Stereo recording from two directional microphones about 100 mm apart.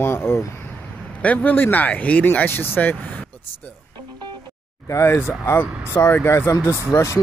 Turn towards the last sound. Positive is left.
turn(degrees=30)  # may be behind; listen again after turning